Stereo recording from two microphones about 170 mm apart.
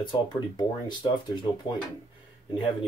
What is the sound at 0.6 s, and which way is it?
Speech, 25° left (ahead or behind).